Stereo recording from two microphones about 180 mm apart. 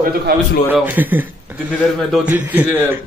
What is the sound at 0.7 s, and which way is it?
Speech, 10° right (ahead or behind).